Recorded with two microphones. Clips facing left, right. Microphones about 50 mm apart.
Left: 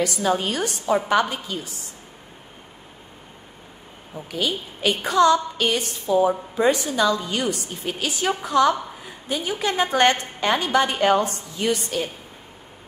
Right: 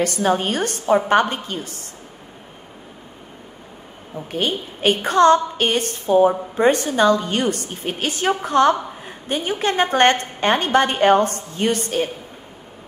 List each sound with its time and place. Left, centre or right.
0.0 s a woman's voice: right
4.3 s a woman's voice: right